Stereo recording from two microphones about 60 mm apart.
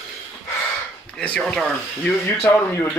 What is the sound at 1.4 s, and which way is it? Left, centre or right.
Speech, centre.